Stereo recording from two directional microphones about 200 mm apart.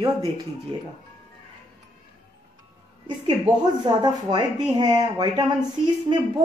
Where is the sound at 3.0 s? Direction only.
20° right (ahead or behind).